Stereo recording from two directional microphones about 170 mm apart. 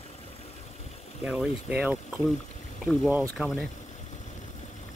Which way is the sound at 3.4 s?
5° right (ahead or behind).